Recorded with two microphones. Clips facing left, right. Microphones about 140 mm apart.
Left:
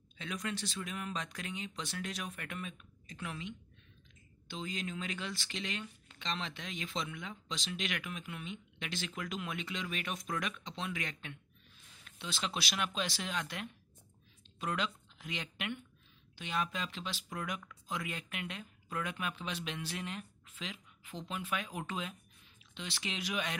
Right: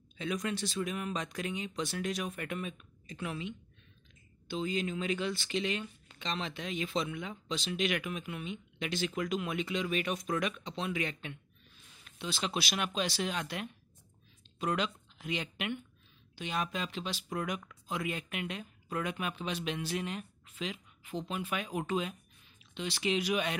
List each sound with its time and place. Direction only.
0.2 s speech: 15° right (ahead or behind)
14.6 s speech: 15° right (ahead or behind)